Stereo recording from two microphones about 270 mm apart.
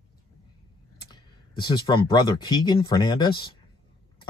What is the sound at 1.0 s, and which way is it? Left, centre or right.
Speech, centre.